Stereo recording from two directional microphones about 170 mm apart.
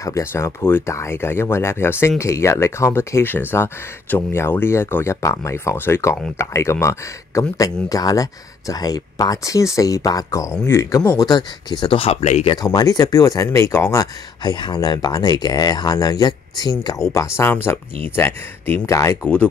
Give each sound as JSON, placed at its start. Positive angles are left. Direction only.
{"t": 0.0, "sound": "speech", "side_deg": 15}
{"t": 12.6, "sound": "speech", "side_deg": 20}